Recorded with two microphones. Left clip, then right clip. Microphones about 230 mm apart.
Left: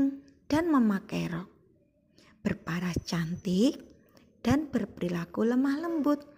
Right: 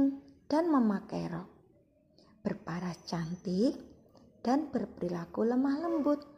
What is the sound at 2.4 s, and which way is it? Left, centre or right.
A woman's voice, left.